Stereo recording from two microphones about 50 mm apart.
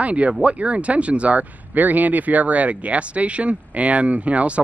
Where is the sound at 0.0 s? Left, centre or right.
Right.